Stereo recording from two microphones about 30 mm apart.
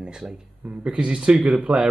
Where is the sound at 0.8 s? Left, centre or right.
Right.